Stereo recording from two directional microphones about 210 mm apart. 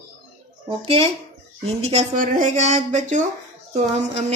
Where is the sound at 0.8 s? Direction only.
30° right (ahead or behind).